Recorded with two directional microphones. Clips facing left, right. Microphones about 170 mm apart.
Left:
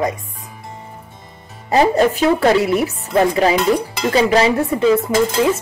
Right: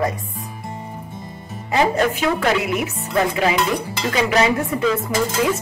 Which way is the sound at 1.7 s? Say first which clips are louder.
Left 4 dB; 35° left (ahead or behind).